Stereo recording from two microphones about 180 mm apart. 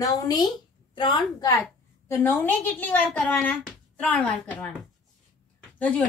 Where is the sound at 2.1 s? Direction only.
10° left (ahead or behind).